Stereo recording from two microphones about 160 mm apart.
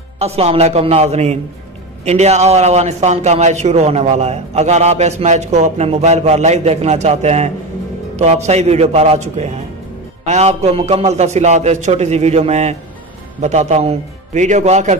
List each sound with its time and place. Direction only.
0.2 s a man's voice: 40° right (ahead or behind)